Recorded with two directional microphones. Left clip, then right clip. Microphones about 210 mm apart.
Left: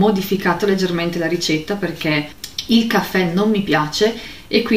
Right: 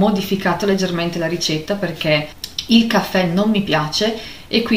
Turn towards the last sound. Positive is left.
turn(degrees=0)  # may be behind; listen again after turning